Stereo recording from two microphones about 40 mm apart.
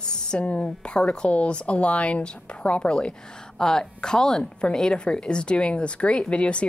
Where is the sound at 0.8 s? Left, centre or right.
Left.